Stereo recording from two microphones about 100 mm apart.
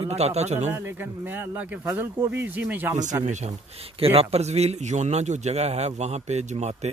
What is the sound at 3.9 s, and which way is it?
A man's voice, 80° right.